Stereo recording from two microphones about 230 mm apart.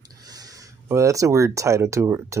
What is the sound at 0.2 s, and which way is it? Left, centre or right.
Speech, centre.